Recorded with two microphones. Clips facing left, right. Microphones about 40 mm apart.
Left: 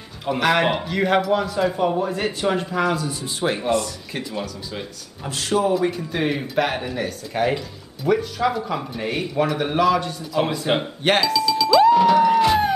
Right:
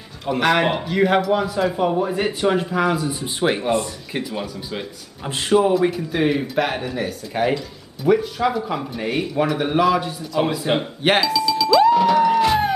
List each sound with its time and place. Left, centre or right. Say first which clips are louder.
0.2 s a man's voice: right 1 dB; centre
3.1 s speech: right 3 dB; centre
4.1 s speech: right 3 dB; centre
5.3 s speech: right 3 dB; right
5.8 s a man's voice: right 3 dB; centre
11.0 s doorbell: right 1 dB; centre